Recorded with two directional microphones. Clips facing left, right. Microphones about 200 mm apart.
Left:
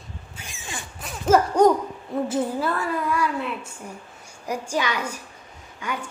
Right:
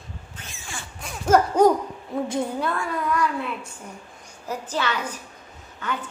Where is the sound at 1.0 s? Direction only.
Centre (ahead or behind).